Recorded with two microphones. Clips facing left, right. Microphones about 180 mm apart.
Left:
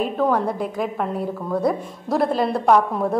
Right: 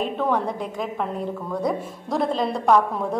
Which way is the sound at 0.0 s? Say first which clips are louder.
Left 3 dB; 5° left (ahead or behind).